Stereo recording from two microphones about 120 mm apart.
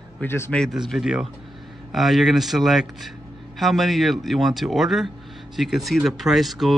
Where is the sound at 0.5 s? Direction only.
Centre (ahead or behind).